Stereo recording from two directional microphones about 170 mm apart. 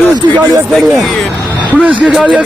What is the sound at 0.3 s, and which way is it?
Speech, 15° right (ahead or behind).